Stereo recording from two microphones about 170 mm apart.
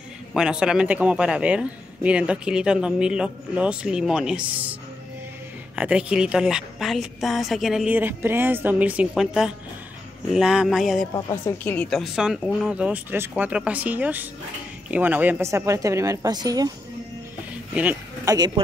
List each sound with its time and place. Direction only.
0.3 s speech: 5° right (ahead or behind)
5.8 s speech: 5° right (ahead or behind)
11.4 s speech: 10° left (ahead or behind); by 16.7 s 20° right (ahead or behind)
18.2 s speech: 20° right (ahead or behind)